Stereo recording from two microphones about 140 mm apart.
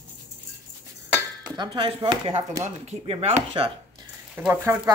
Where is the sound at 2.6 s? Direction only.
50° right (ahead or behind).